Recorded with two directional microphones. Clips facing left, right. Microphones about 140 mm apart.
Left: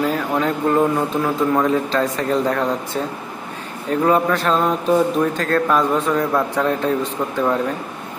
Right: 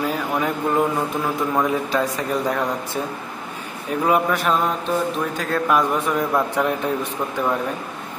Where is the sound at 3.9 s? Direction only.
10° right (ahead or behind).